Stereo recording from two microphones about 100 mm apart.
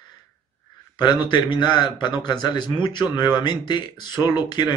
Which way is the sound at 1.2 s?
55° left (ahead or behind).